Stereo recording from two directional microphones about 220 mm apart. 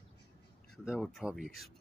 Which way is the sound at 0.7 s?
Centre (ahead or behind).